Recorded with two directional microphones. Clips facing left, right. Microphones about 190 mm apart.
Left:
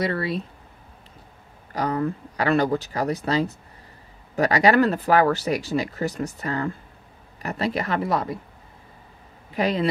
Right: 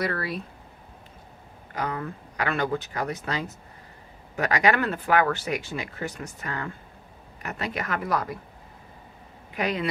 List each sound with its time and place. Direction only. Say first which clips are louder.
0.0 s speech: left 4 dB; 25° left (ahead or behind)
1.7 s speech: left 6 dB; 35° left (ahead or behind)
9.5 s speech: left 5 dB; 30° left (ahead or behind)